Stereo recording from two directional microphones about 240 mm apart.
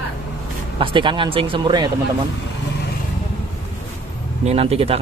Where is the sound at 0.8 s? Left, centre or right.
Right.